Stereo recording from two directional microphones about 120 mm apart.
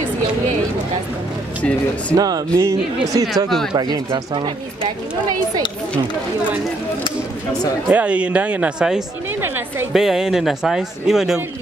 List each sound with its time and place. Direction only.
1.6 s speech: 10° left (ahead or behind)
2.1 s speech: 30° right (ahead or behind)
3.4 s speech: centre (ahead or behind)
3.7 s speech: 35° right (ahead or behind)
7.9 s speech: 10° right (ahead or behind)